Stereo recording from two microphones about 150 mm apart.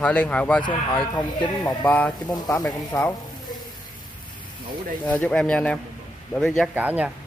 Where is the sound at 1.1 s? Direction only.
25° left (ahead or behind).